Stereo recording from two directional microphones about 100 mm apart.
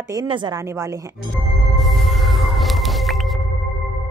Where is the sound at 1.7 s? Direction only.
Centre (ahead or behind).